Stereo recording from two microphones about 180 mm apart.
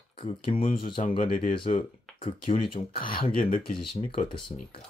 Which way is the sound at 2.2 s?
30° left (ahead or behind).